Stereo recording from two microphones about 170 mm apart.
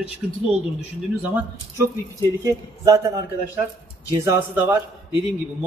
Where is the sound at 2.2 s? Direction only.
20° right (ahead or behind).